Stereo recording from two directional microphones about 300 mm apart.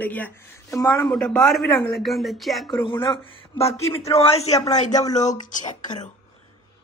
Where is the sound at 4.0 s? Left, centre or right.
Centre.